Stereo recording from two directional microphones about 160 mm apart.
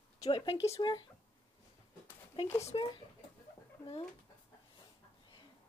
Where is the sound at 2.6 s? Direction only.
35° left (ahead or behind).